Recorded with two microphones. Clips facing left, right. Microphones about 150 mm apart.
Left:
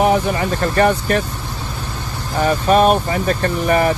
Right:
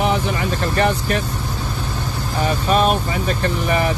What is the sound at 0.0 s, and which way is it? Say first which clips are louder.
Speech: left 4 dB; 45° left (ahead or behind).